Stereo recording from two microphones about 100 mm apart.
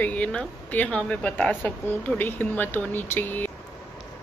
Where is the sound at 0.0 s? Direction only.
15° left (ahead or behind).